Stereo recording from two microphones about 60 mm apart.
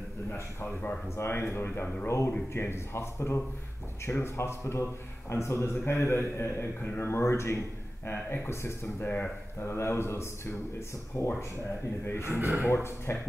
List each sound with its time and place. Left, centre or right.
1.1 s a man's voice: left
9.0 s speech: left
9.7 s a man's voice: left